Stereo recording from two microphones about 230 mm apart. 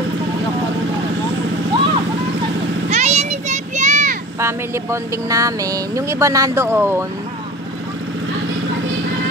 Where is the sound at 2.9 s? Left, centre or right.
Right.